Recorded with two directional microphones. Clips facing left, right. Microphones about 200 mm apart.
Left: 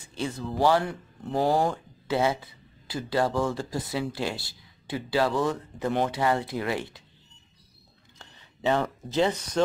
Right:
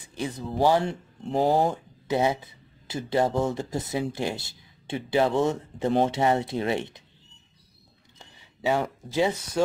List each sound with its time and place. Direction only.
0.0 s speech: 15° right (ahead or behind)
8.2 s a sound: 10° right (ahead or behind)
9.1 s speech: 10° right (ahead or behind)